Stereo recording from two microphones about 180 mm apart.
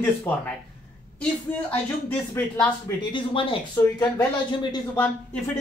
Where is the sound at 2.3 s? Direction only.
15° left (ahead or behind).